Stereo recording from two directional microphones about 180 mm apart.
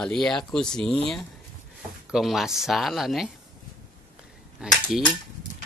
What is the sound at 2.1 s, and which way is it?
Speech, centre (ahead or behind).